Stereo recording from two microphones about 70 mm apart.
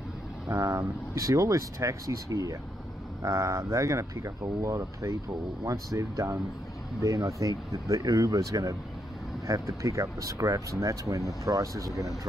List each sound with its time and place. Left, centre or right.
0.5 s speech: right